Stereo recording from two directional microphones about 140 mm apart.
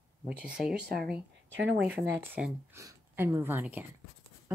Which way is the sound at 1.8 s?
10° right (ahead or behind).